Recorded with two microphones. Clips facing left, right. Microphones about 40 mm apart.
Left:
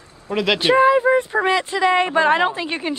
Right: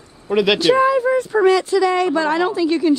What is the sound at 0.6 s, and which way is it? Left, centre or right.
A woman's voice, left.